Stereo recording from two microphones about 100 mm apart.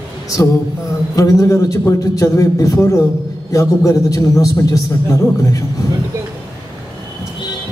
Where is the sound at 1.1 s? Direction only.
35° left (ahead or behind).